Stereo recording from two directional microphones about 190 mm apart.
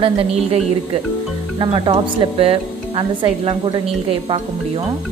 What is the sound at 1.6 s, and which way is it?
Speech, 25° right (ahead or behind).